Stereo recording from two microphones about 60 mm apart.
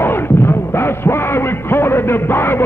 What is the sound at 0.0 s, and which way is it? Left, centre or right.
Music, left.